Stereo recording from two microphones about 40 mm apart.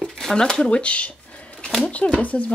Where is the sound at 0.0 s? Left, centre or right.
Centre.